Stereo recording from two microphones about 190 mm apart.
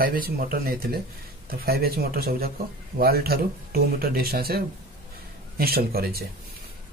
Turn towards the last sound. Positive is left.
turn(degrees=-50)  # may be behind; listen again after turning